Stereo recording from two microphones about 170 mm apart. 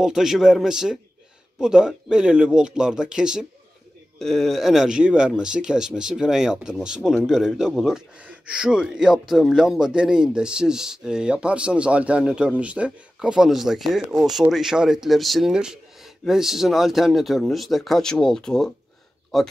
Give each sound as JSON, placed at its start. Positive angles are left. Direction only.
{"t": 0.0, "sound": "speech", "side_deg": 0}